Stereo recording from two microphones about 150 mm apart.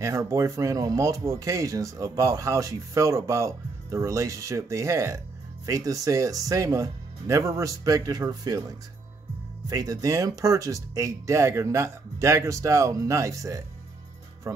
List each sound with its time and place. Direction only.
0.0 s speech: 20° right (ahead or behind)